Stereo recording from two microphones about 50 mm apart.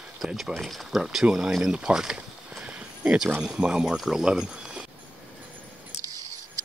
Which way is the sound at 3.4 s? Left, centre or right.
Centre.